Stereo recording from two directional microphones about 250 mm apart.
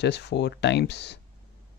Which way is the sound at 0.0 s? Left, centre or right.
Left.